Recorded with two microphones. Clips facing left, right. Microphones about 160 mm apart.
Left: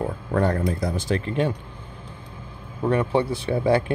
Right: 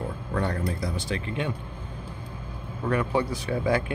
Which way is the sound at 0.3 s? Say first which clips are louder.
Left 6 dB; 45° left (ahead or behind).